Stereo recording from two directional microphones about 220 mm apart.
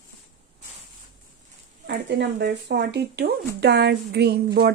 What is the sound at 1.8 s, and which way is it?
Speech, 50° right (ahead or behind).